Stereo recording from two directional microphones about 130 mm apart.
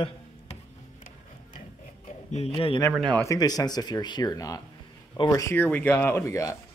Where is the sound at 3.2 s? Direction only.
30° left (ahead or behind).